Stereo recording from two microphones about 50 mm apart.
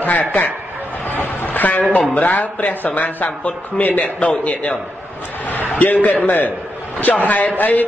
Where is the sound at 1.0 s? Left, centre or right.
Left.